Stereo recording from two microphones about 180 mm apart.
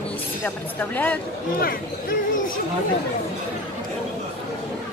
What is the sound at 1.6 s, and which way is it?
Speech, 50° left (ahead or behind).